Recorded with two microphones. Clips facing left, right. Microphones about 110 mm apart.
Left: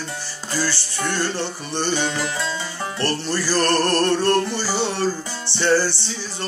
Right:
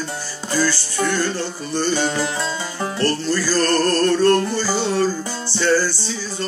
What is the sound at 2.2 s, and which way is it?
Music, 20° right (ahead or behind).